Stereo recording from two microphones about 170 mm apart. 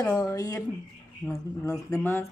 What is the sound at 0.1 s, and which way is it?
Speech, 15° left (ahead or behind).